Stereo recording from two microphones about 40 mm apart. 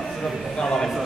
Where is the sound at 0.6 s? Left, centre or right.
Centre.